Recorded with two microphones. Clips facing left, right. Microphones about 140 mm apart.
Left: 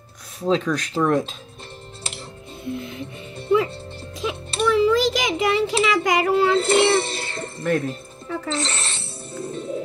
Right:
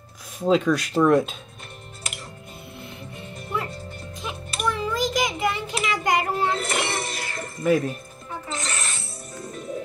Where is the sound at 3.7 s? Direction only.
30° left (ahead or behind).